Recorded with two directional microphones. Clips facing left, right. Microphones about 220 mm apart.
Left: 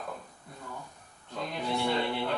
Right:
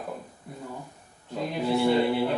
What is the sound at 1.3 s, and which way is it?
Speech, 5° right (ahead or behind).